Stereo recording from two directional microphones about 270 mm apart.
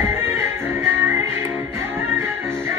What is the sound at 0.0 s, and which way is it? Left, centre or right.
Music, centre.